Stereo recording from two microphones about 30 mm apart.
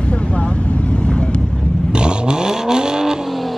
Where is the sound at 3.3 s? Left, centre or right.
Centre.